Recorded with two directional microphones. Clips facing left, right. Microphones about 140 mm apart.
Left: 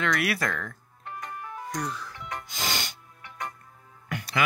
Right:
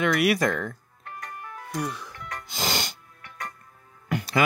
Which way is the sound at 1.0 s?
20° left (ahead or behind).